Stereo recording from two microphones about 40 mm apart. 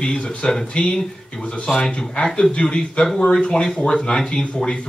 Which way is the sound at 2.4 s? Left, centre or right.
Left.